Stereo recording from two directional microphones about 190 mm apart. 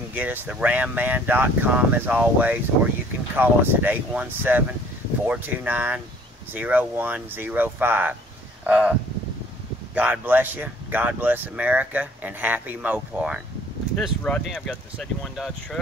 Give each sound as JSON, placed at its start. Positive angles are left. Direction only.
{"t": 0.1, "sound": "speech", "side_deg": -10}
{"t": 9.9, "sound": "speech", "side_deg": -10}
{"t": 13.9, "sound": "speech", "side_deg": 5}